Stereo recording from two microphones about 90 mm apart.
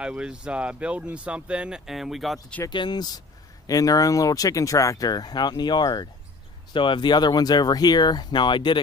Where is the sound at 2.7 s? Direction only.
55° left (ahead or behind).